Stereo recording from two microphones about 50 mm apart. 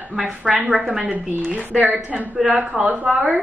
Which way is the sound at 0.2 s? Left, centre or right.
Right.